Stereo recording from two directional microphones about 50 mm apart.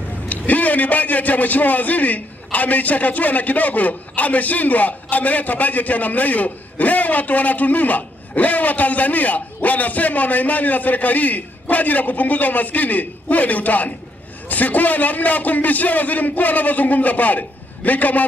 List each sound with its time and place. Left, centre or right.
0.3 s a man's voice: left